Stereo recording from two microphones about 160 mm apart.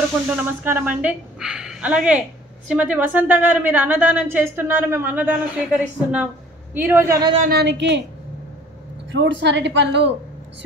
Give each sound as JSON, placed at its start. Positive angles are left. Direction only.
{"t": 0.4, "sound": "a woman's voice", "side_deg": -10}
{"t": 7.4, "sound": "a woman's voice", "side_deg": -85}
{"t": 9.2, "sound": "a woman's voice", "side_deg": -90}